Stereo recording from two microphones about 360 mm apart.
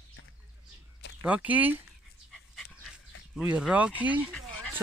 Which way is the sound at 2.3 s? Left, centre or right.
Centre.